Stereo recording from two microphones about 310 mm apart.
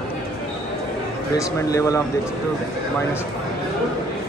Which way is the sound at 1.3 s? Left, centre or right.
Centre.